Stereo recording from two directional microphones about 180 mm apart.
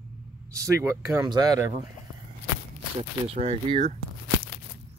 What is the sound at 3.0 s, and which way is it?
Speech, 35° right (ahead or behind).